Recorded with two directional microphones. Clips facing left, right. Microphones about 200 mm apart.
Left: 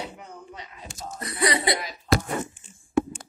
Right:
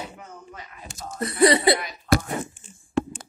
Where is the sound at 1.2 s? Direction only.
30° right (ahead or behind).